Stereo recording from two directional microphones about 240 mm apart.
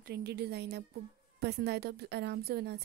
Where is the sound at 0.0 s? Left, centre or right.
Right.